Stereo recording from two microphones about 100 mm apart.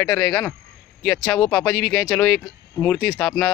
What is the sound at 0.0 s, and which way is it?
Speech, 10° left (ahead or behind).